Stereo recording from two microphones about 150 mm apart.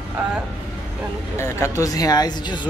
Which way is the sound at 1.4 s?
20° left (ahead or behind).